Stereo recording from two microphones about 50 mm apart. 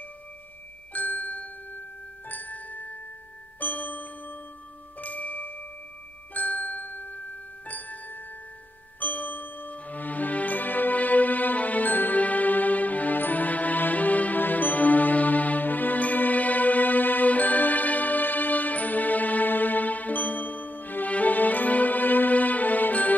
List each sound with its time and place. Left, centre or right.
0.9 s glockenspiel: left
2.2 s music: left